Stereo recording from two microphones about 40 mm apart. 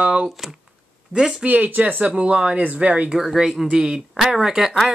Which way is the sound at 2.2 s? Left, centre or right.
Right.